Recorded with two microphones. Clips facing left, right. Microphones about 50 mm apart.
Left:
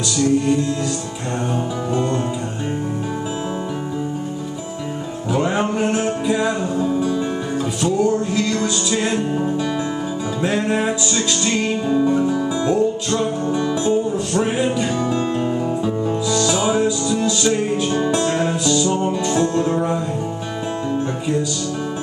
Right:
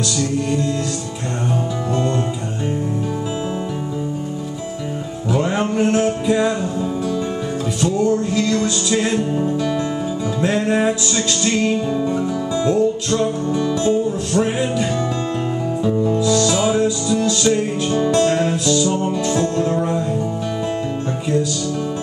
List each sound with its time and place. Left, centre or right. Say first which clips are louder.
5.3 s music: even; centre
10.4 s music: right 2 dB; centre